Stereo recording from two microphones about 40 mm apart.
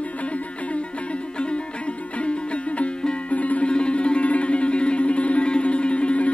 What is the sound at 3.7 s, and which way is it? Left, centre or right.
Music, left.